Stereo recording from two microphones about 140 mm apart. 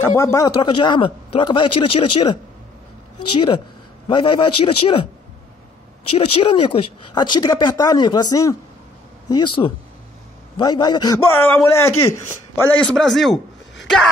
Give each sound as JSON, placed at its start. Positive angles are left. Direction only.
{"t": 0.0, "sound": "speech", "side_deg": 20}
{"t": 0.6, "sound": "a man's voice", "side_deg": 35}
{"t": 4.1, "sound": "a man's voice", "side_deg": 35}
{"t": 6.1, "sound": "a man's voice", "side_deg": 40}
{"t": 11.3, "sound": "speech", "side_deg": 15}
{"t": 12.9, "sound": "speech", "side_deg": 0}